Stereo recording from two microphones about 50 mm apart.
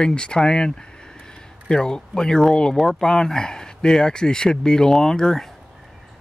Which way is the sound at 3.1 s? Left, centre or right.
Centre.